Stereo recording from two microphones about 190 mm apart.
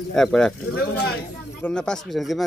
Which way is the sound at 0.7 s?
60° left (ahead or behind).